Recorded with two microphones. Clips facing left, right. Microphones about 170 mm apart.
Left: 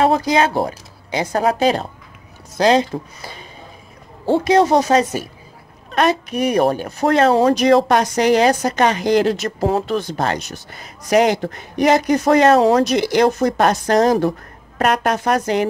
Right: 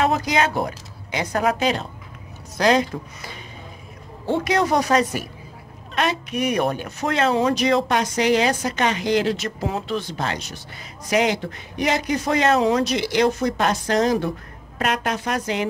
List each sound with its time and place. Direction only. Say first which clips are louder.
0.0 s speech: left 5 dB; 30° left (ahead or behind)
5.9 s speech: left 6 dB; 45° left (ahead or behind)